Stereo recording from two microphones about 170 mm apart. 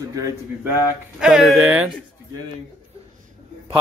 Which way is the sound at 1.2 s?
5° right (ahead or behind).